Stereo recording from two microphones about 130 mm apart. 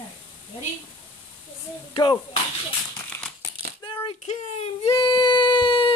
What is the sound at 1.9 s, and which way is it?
Speech, 35° left (ahead or behind).